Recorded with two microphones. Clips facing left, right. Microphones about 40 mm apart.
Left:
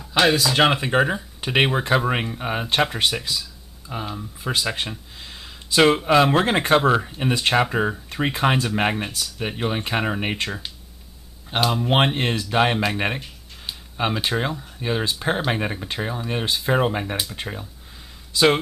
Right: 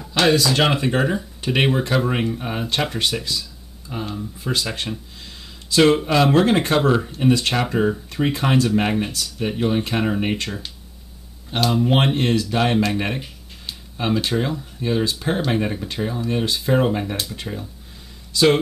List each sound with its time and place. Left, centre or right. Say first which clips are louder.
0.1 s speech: right 1 dB; centre
5.2 s a sound: left 1 dB; centre
6.0 s speech: right 1 dB; centre